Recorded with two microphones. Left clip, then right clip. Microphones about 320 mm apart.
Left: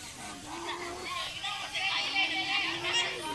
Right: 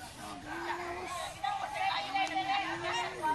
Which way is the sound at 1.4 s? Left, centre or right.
Right.